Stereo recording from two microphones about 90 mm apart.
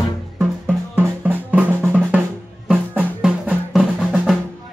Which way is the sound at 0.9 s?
20° right (ahead or behind).